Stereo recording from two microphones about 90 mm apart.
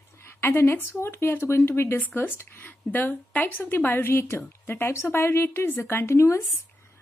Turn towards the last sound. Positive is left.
turn(degrees=30)  # may be behind; listen again after turning